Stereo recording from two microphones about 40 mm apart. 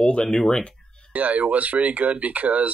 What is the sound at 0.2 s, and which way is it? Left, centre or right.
Speech, centre.